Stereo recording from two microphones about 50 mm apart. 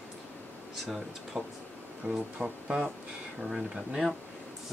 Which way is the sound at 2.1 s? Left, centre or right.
Centre.